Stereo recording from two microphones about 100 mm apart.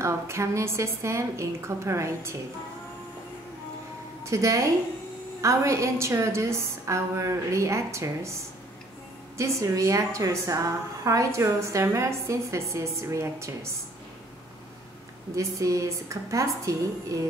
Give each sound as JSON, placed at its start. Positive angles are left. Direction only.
{"t": 0.0, "sound": "a woman's voice", "side_deg": -30}
{"t": 4.2, "sound": "a woman's voice", "side_deg": -30}
{"t": 9.4, "sound": "a woman's voice", "side_deg": -30}
{"t": 15.3, "sound": "a woman's voice", "side_deg": -35}